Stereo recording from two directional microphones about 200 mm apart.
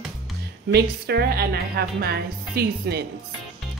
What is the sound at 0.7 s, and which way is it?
A woman's voice, 55° right (ahead or behind).